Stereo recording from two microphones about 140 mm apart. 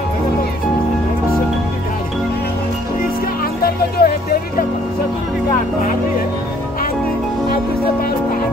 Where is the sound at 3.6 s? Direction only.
90° left.